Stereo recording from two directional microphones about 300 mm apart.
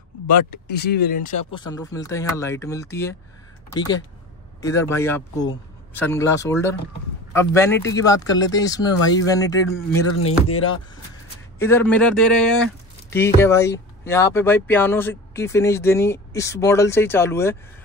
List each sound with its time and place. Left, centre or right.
0.7 s speech: left
1.7 s speech: centre
11.5 s speech: centre